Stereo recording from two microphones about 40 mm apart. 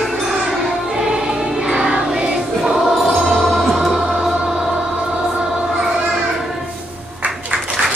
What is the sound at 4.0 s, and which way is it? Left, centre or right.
Music, right.